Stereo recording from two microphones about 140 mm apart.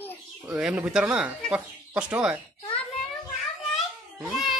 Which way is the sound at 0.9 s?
10° right (ahead or behind).